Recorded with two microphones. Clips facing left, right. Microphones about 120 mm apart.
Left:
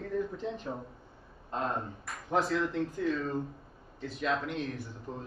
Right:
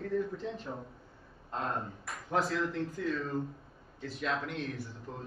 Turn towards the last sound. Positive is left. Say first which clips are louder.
# left 3 dB
turn(degrees=15)  # may be behind; listen again after turning